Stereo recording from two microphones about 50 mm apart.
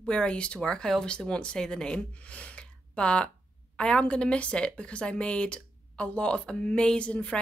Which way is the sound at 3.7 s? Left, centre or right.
Centre.